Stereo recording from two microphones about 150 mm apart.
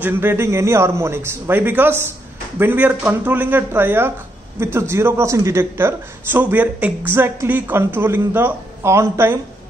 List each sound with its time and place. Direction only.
0.0 s speech: 15° right (ahead or behind)